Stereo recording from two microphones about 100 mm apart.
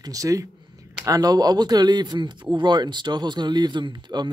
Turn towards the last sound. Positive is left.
turn(degrees=-50)  # may be behind; listen again after turning